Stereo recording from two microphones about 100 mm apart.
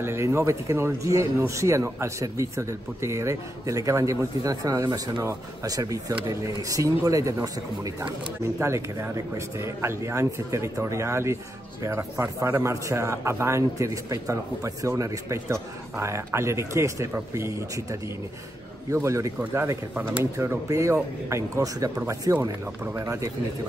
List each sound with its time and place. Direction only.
0.0 s a man's voice: 25° right (ahead or behind)
8.5 s a man's voice: 30° right (ahead or behind)
18.9 s a man's voice: 30° right (ahead or behind)